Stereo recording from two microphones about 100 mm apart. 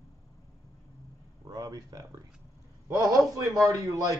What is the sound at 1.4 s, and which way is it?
Speech, 40° right (ahead or behind).